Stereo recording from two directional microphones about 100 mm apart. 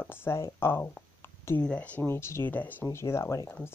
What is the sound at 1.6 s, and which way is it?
Speech, 10° left (ahead or behind).